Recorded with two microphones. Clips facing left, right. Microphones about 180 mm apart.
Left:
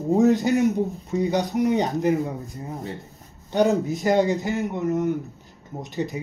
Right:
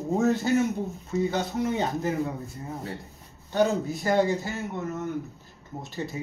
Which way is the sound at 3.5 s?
20° left (ahead or behind).